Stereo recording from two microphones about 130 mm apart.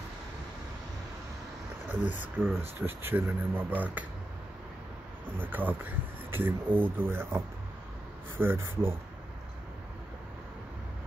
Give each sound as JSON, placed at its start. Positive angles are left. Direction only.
{"t": 1.9, "sound": "speech", "side_deg": -15}
{"t": 5.4, "sound": "speech", "side_deg": -15}